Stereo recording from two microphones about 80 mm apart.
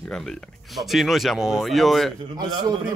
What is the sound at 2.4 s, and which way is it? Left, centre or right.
Speech, right.